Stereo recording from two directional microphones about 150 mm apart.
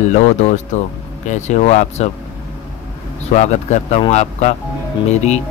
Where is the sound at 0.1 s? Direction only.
50° left (ahead or behind).